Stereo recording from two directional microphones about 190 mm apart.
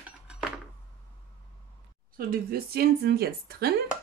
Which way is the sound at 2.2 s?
50° right (ahead or behind).